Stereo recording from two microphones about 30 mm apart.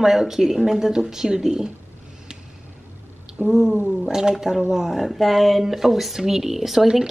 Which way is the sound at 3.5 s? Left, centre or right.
Centre.